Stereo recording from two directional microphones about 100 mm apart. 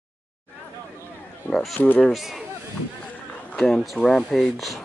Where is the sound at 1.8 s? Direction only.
20° left (ahead or behind).